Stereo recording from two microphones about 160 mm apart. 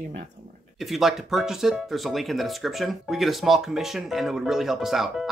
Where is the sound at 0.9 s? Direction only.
Centre (ahead or behind).